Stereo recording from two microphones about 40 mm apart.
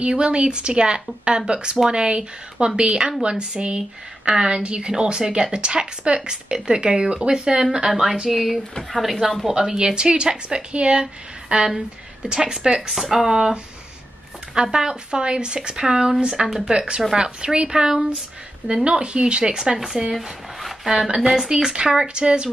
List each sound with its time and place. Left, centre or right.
0.0 s speech: right
7.9 s speech: centre
12.9 s a woman's voice: centre
18.9 s speech: right
20.2 s a sound: centre
21.1 s a woman's voice: centre